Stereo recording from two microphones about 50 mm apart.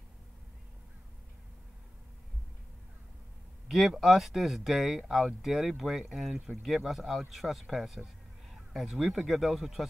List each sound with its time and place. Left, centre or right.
3.6 s speech: centre